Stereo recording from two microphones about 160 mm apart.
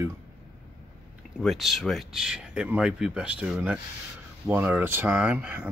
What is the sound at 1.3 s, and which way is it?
Speech, centre (ahead or behind).